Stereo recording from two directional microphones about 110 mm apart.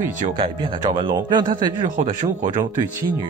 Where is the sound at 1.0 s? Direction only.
45° right (ahead or behind).